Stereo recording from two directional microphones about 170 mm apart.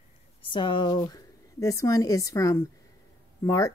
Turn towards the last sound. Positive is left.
turn(degrees=15)  # may be behind; listen again after turning